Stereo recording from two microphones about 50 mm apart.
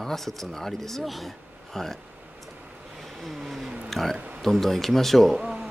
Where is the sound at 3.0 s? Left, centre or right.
Centre.